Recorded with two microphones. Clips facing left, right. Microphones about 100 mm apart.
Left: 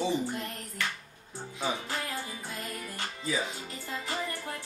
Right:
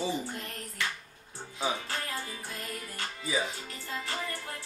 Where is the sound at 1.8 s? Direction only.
15° left (ahead or behind).